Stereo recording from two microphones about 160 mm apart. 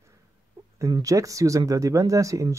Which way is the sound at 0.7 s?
25° right (ahead or behind).